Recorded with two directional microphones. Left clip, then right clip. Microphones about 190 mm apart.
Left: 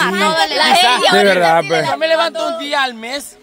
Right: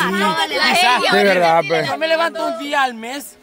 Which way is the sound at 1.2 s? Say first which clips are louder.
Left 2 dB; 15° left (ahead or behind).